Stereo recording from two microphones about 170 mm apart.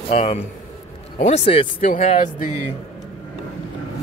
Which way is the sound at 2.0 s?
50° left (ahead or behind).